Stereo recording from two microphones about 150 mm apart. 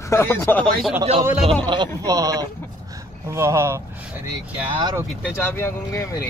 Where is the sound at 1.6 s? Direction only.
30° right (ahead or behind).